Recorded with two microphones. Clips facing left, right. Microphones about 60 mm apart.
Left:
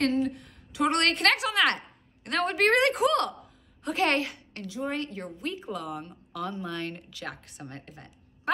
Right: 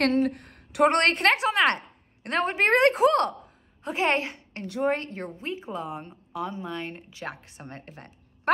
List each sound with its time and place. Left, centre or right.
0.0 s speech: right
0.8 s a woman's voice: right
4.6 s a woman's voice: right
4.9 s speech: right; by 7.0 s centre
7.1 s speech: right